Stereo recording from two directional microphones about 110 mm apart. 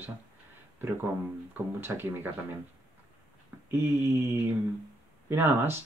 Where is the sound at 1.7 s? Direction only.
20° right (ahead or behind).